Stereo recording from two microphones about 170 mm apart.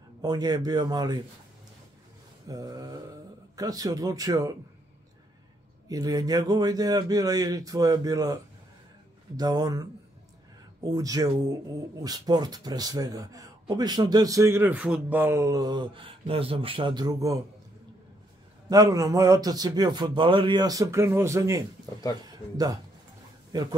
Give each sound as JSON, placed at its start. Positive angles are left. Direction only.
{"t": 0.2, "sound": "a man's voice", "side_deg": -20}
{"t": 2.4, "sound": "a man's voice", "side_deg": -20}
{"t": 5.9, "sound": "a man's voice", "side_deg": -20}
{"t": 9.4, "sound": "a man's voice", "side_deg": -20}
{"t": 18.7, "sound": "a man's voice", "side_deg": -20}
{"t": 23.5, "sound": "a man's voice", "side_deg": -25}